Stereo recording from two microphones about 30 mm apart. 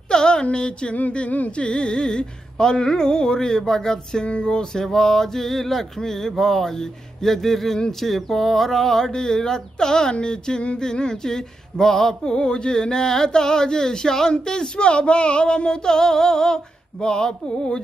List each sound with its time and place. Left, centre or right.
0.1 s a sound: left
1.6 s female singing: left
4.3 s a sound: left
10.2 s female singing: left
12.3 s female singing: left
14.8 s female singing: left